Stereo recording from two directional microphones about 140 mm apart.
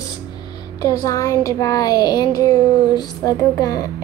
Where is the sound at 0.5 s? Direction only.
30° left (ahead or behind).